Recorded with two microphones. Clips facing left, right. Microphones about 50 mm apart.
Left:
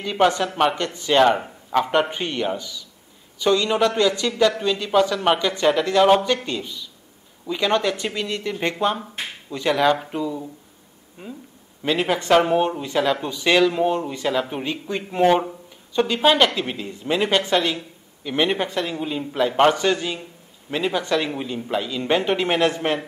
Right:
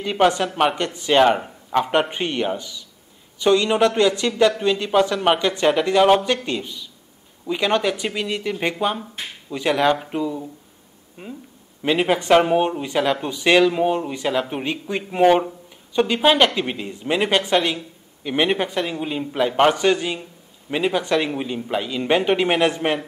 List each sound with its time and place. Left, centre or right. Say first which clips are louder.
0.0 s speech: right 1 dB; centre
0.8 s speech: right 1 dB; centre
1.9 s a man's voice: right 1 dB; centre
16.2 s speech: even; centre